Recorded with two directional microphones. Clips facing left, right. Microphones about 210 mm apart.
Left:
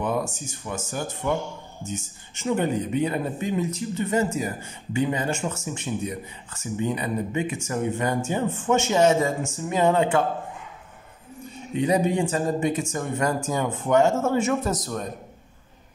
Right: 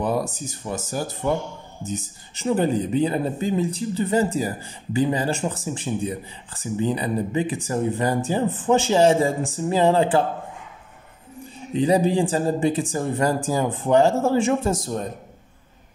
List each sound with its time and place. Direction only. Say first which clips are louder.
0.0 s speech: right 2 dB; 35° right (ahead or behind)
11.7 s speech: right 3 dB; 30° right (ahead or behind)